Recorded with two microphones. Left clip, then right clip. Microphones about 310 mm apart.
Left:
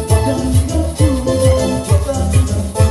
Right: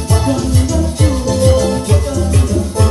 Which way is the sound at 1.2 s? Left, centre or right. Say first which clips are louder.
Right 2 dB; left.